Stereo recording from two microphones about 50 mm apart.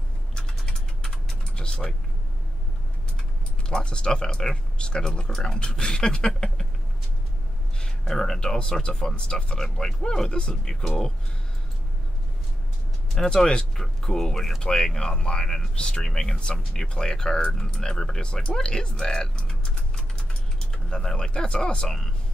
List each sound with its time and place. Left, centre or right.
0.3 s typing: centre
3.6 s speech: centre
8.0 s speech: centre
13.1 s speech: centre